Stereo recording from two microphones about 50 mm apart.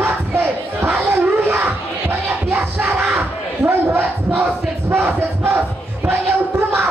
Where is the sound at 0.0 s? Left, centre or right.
Right.